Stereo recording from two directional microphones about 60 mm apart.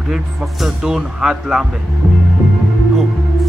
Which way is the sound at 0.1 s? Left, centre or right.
Centre.